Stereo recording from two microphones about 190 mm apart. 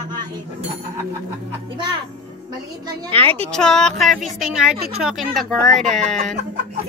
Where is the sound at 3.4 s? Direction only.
5° left (ahead or behind).